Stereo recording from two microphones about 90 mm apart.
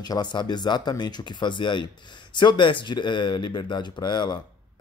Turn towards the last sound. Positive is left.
turn(degrees=55)  # may be behind; listen again after turning